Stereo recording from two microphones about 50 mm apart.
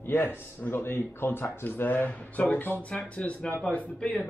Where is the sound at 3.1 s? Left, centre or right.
Left.